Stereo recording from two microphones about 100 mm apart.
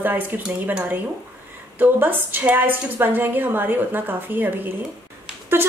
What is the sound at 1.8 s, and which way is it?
Speech, 20° right (ahead or behind).